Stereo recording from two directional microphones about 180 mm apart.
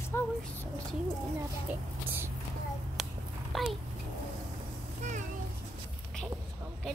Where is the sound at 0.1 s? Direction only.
10° left (ahead or behind).